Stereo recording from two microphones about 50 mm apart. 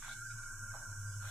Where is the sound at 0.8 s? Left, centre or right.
Centre.